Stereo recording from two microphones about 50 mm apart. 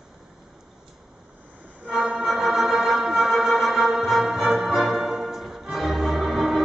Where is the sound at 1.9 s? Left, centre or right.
Centre.